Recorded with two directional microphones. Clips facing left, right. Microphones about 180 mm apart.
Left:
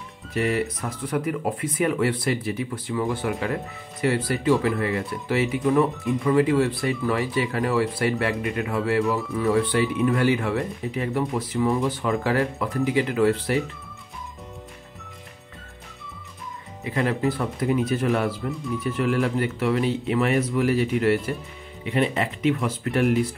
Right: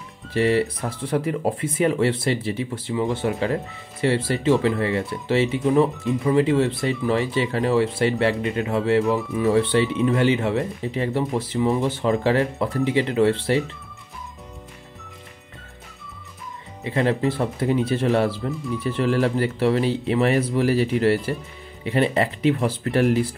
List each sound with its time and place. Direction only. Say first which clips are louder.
0.3 s speech: right 4 dB; 30° right (ahead or behind)
16.8 s speech: right 2 dB; 25° right (ahead or behind)